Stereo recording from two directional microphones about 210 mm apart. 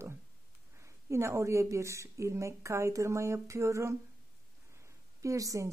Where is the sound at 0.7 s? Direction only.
15° right (ahead or behind).